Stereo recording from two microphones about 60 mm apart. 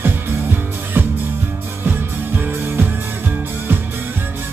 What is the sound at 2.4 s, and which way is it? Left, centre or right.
Music, right.